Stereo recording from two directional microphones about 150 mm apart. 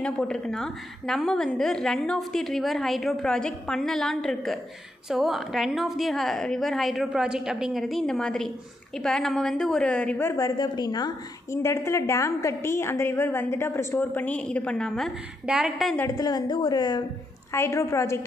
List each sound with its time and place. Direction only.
0.0 s a woman's voice: 5° left (ahead or behind)
10.3 s a woman's voice: 25° left (ahead or behind); by 16.0 s centre (ahead or behind)
16.0 s a woman's voice: 25° left (ahead or behind)